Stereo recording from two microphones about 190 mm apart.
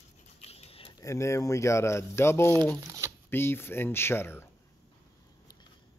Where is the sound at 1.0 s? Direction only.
15° left (ahead or behind).